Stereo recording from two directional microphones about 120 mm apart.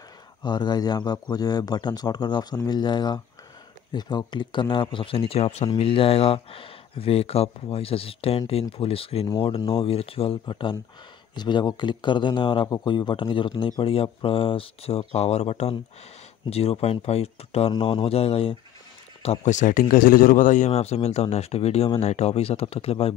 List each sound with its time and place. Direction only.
0.4 s speech: 35° left (ahead or behind); by 5.7 s 60° left (ahead or behind)
5.8 s speech: 50° left (ahead or behind)
10.4 s speech: 40° left (ahead or behind); by 17.7 s 60° left (ahead or behind)
17.7 s speech: 45° left (ahead or behind)
19.4 s speech: 90° left; by 23.1 s 55° left (ahead or behind)